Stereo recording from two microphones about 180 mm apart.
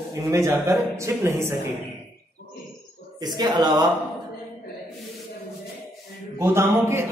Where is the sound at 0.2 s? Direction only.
15° right (ahead or behind).